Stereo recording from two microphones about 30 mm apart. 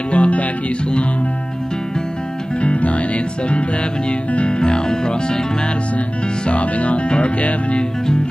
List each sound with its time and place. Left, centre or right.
0.1 s music: left
2.6 s music: left
4.5 s speech: left
6.5 s music: left